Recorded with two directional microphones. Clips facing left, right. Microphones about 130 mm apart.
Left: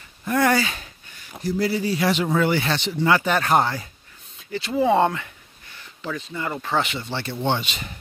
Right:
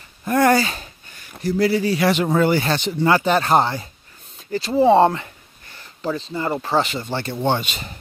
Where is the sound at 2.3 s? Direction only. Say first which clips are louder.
Right 3 dB; 40° right (ahead or behind).